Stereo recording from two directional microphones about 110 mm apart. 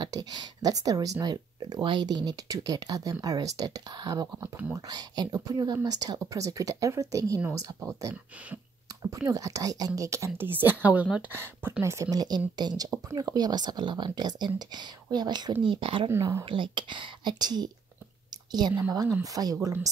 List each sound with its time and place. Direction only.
0.0 s a woman's voice: 40° right (ahead or behind); by 8.5 s 20° right (ahead or behind)
9.3 s a woman's voice: 30° right (ahead or behind); by 11.2 s 10° right (ahead or behind)
11.3 s a woman's voice: 20° right (ahead or behind); by 15.5 s 40° right (ahead or behind)
15.6 s speech: 50° right (ahead or behind)
16.1 s a woman's voice: 25° right (ahead or behind)
16.4 s speech: 50° right (ahead or behind)
18.8 s a woman's voice: 30° right (ahead or behind)